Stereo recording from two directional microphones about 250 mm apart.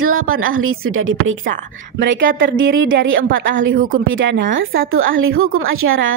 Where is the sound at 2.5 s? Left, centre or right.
Right.